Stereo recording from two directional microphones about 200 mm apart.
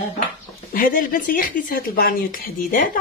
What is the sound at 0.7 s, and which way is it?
Speech, 45° left (ahead or behind).